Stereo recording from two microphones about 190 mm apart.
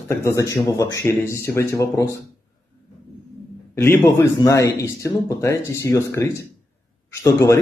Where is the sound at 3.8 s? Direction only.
15° left (ahead or behind).